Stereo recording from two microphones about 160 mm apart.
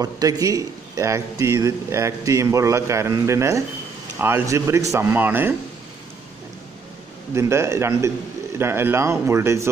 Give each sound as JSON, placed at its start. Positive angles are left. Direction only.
{"t": 0.0, "sound": "speech", "side_deg": -25}
{"t": 7.3, "sound": "speech", "side_deg": -15}